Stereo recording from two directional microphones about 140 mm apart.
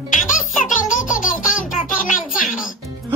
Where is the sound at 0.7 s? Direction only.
65° left (ahead or behind).